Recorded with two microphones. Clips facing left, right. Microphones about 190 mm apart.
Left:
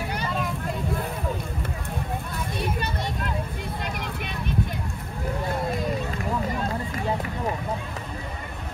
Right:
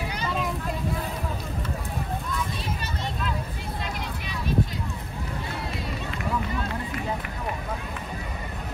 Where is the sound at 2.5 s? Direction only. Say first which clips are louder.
Left 5 dB; 60° left (ahead or behind).